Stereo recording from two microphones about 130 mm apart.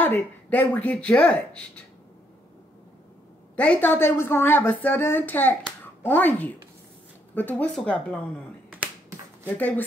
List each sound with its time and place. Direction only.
0.0 s a woman's voice: 15° left (ahead or behind)
3.5 s a woman's voice: 10° left (ahead or behind)
9.6 s a woman's voice: 10° left (ahead or behind)